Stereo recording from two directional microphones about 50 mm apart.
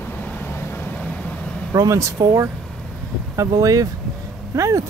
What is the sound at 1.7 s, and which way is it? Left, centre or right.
Speech, right.